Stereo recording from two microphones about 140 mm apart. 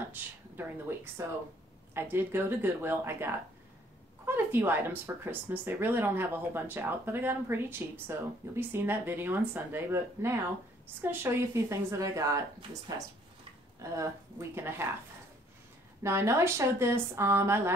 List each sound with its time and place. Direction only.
0.1 s speech: 15° right (ahead or behind)
16.0 s speech: 20° right (ahead or behind)